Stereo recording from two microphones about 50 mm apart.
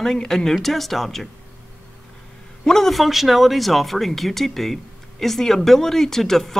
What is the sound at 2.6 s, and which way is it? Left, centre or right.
Speech, centre.